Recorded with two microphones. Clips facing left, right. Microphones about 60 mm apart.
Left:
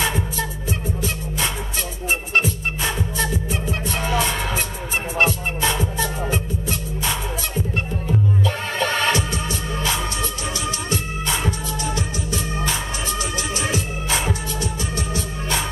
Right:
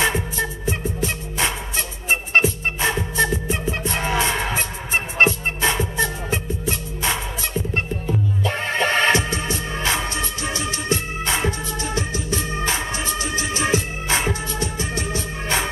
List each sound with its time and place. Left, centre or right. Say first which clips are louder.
0.0 s music: right 2 dB; right
8.5 s music: right 2 dB; right